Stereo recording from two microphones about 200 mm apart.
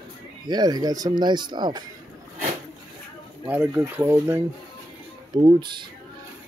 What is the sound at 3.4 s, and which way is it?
Speech, 10° right (ahead or behind).